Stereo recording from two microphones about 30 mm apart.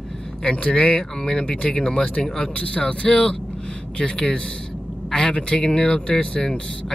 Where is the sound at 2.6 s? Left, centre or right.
Left.